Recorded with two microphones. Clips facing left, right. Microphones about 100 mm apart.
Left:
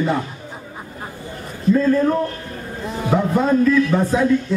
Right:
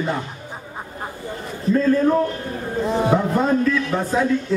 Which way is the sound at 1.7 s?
Centre (ahead or behind).